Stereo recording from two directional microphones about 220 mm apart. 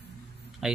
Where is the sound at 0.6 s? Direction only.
Centre (ahead or behind).